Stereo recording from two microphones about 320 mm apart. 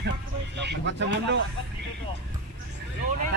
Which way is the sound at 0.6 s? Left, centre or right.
Right.